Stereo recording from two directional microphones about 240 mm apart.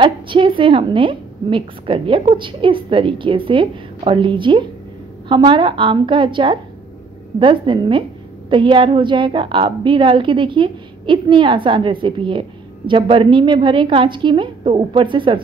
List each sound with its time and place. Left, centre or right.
0.0 s a woman's voice: right